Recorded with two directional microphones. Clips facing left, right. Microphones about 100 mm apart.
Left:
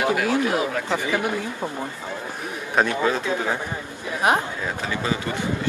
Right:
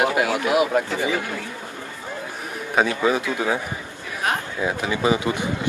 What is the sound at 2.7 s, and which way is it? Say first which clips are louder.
Speech: right 1 dB; 5° right (ahead or behind).